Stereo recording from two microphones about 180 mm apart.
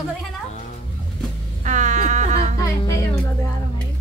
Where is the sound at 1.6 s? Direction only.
40° right (ahead or behind).